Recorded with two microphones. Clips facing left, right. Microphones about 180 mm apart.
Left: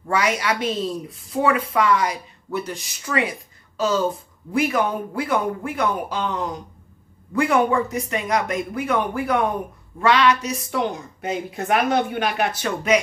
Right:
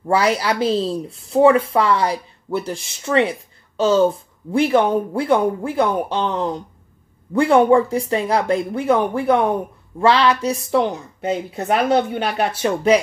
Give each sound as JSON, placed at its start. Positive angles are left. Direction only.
{"t": 0.1, "sound": "a woman's voice", "side_deg": -30}